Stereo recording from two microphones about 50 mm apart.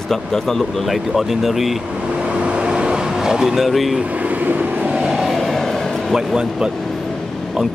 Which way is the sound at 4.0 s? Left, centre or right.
Right.